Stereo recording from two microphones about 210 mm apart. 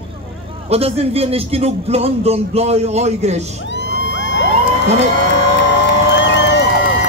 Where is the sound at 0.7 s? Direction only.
30° right (ahead or behind).